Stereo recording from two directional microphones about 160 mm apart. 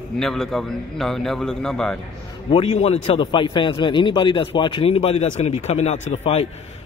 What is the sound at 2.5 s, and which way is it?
A man's voice, 35° left (ahead or behind).